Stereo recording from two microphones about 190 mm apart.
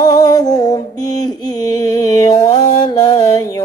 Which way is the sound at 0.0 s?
20° left (ahead or behind).